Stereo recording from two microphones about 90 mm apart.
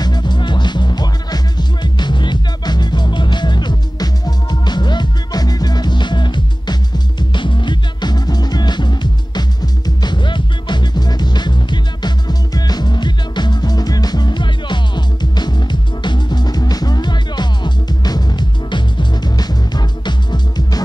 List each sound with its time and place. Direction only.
0.0 s music: 55° left (ahead or behind)